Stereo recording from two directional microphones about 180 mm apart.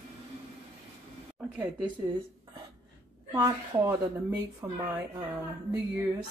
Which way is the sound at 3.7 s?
15° right (ahead or behind).